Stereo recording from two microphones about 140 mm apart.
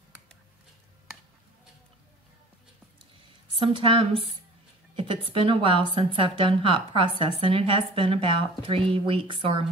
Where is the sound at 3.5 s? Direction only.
35° right (ahead or behind).